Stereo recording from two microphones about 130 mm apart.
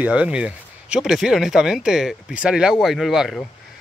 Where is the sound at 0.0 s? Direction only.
10° right (ahead or behind).